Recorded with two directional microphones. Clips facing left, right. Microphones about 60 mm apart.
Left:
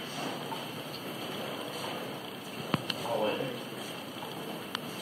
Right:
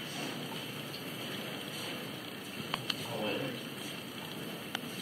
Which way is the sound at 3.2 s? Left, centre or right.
Centre.